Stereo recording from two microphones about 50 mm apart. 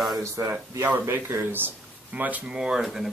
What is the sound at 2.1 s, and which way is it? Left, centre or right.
Speech, right.